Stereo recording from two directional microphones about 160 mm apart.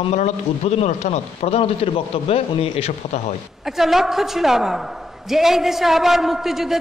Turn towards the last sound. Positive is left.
turn(degrees=0)  # may be behind; listen again after turning